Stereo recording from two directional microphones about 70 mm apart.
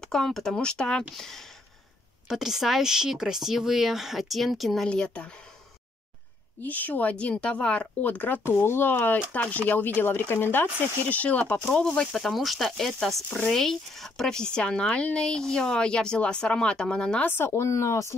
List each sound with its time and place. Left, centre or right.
0.0 s speech: centre
4.8 s speech: centre
6.6 s speech: left
17.2 s speech: left